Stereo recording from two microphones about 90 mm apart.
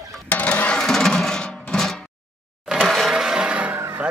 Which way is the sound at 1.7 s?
5° left (ahead or behind).